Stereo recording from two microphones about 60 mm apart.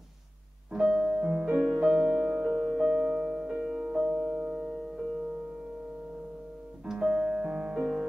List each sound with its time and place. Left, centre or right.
0.7 s music: centre
6.9 s piano: centre